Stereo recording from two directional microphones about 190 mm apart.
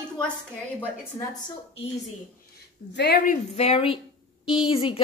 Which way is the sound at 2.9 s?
60° left (ahead or behind).